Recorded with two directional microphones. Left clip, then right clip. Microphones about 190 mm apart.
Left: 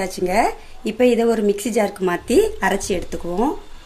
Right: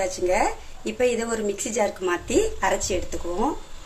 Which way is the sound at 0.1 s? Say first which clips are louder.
Left 4 dB; 60° left (ahead or behind).